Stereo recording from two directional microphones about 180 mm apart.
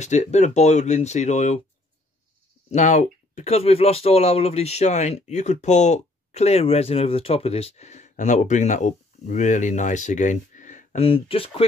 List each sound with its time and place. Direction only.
0.0 s speech: 40° left (ahead or behind)
2.7 s speech: 40° left (ahead or behind)
11.1 s speech: 30° left (ahead or behind)